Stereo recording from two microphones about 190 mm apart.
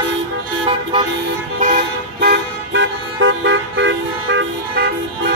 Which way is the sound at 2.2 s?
65° right (ahead or behind).